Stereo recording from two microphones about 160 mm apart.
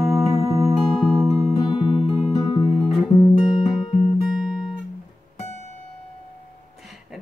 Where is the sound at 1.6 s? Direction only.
25° left (ahead or behind).